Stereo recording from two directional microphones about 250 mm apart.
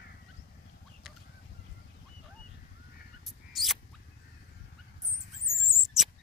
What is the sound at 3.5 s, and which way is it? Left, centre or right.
Rodents, centre.